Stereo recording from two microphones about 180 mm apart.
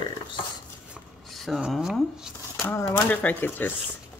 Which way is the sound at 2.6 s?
10° left (ahead or behind).